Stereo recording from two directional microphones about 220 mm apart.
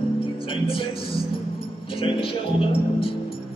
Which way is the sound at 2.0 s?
25° left (ahead or behind).